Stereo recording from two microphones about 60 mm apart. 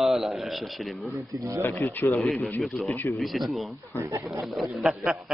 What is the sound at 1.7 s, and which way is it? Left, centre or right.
Speech, left.